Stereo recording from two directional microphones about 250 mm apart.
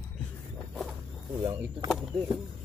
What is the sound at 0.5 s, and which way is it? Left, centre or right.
Walk, centre.